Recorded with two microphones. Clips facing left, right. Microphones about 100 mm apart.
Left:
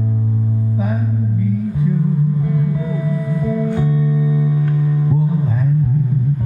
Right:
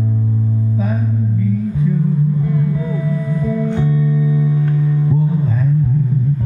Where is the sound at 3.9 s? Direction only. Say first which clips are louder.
Right 1 dB; 25° left (ahead or behind).